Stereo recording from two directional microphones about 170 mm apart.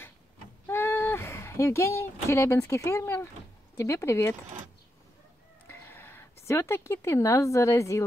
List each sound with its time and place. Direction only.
0.7 s speech: 15° left (ahead or behind)
5.7 s speech: 10° left (ahead or behind)